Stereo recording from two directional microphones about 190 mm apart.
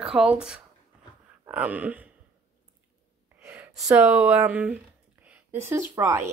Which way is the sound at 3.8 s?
10° right (ahead or behind).